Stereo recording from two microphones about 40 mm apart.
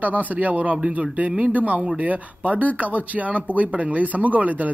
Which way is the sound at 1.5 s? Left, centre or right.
Right.